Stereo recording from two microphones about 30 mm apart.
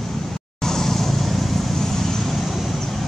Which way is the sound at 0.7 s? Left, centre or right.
Centre.